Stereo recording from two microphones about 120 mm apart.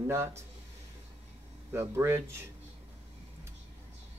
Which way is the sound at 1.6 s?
20° right (ahead or behind).